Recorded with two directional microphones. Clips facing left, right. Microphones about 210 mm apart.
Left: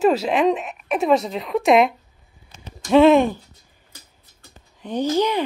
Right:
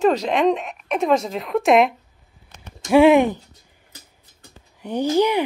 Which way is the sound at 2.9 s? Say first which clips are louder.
Even; 10° right (ahead or behind).